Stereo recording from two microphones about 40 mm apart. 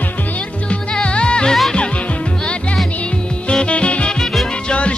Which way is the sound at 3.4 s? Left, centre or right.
Left.